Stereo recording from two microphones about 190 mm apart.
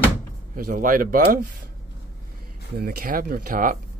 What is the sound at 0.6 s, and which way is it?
Speech, 45° right (ahead or behind).